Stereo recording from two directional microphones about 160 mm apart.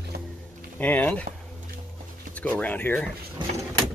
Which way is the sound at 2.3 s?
10° left (ahead or behind).